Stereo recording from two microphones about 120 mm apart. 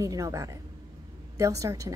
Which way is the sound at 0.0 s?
25° right (ahead or behind).